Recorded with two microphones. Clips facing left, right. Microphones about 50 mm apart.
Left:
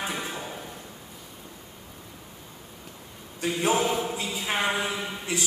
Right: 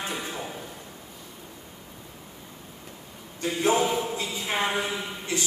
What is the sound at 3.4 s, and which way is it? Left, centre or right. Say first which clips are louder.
Mantra: right 1 dB; centre.